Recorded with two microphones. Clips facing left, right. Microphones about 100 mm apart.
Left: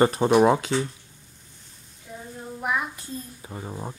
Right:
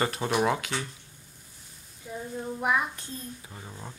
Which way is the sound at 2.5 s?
Centre (ahead or behind).